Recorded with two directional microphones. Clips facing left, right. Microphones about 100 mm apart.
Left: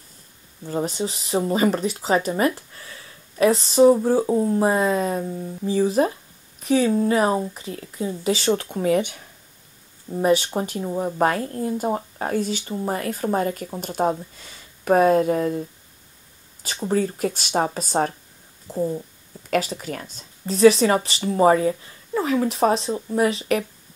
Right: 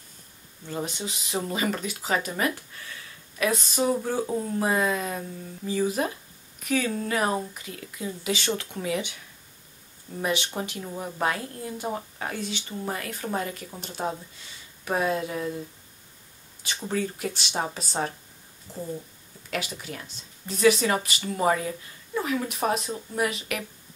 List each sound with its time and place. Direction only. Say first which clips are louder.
0.7 s speech: left 7 dB; 35° left (ahead or behind)
16.6 s speech: left 6 dB; 35° left (ahead or behind)
19.5 s speech: left 9 dB; 40° left (ahead or behind)
20.4 s speech: left 7 dB; 35° left (ahead or behind)